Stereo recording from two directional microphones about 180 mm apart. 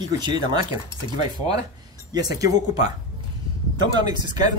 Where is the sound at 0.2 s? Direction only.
25° right (ahead or behind).